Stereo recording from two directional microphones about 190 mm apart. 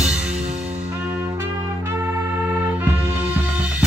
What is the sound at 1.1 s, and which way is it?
Brass instrument, 15° right (ahead or behind).